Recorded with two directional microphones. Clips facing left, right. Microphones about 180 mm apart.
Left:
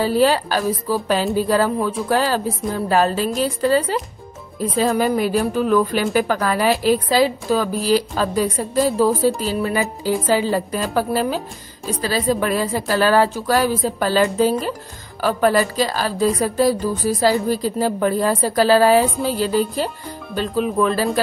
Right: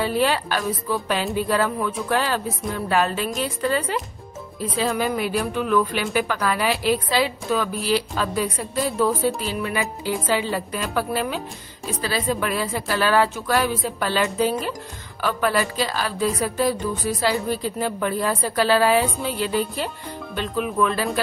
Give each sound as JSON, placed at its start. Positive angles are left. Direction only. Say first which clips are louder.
{"t": 0.0, "sound": "speech", "louder": "left 5 dB", "side_deg": 35}